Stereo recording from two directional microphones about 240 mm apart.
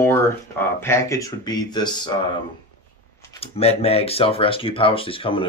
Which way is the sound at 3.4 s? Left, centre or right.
Left.